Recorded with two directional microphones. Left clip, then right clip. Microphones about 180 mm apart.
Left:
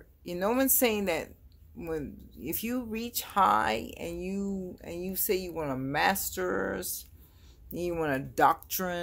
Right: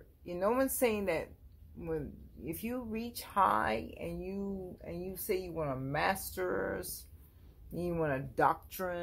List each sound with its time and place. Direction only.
0.2 s speech: 25° left (ahead or behind)